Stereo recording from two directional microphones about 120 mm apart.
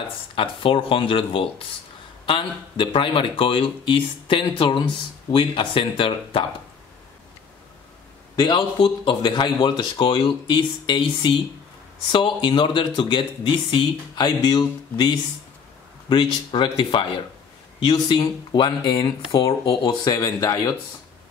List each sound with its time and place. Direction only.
0.4 s speech: 45° left (ahead or behind)
8.4 s speech: 40° left (ahead or behind)
19.8 s speech: 30° left (ahead or behind)